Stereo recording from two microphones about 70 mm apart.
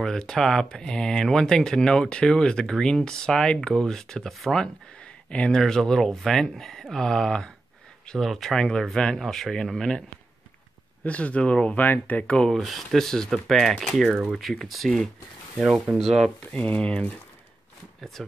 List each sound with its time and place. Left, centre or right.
0.0 s speech: centre
11.1 s speech: centre
12.4 s speech: centre
16.5 s speech: centre